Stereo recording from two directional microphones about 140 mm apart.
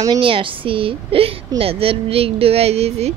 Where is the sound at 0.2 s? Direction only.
40° right (ahead or behind).